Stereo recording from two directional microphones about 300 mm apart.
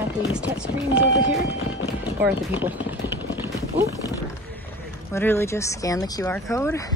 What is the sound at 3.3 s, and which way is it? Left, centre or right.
Clip-clop, centre.